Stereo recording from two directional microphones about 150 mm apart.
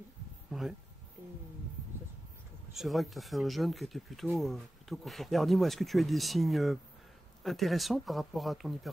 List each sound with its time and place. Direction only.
0.5 s speech: centre (ahead or behind)
2.7 s speech: centre (ahead or behind)